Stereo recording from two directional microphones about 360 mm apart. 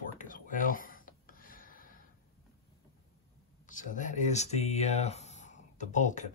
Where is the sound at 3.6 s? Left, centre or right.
Left.